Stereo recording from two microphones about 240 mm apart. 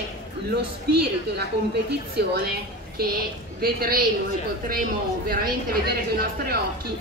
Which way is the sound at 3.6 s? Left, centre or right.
Right.